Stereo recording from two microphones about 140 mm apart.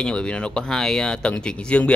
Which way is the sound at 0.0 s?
5° left (ahead or behind).